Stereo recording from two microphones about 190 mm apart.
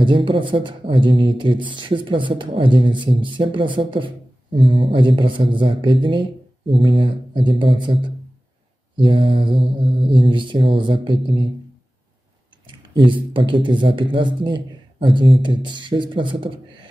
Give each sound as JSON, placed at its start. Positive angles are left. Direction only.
{"t": 0.0, "sound": "speech", "side_deg": -25}
{"t": 12.6, "sound": "speech", "side_deg": -25}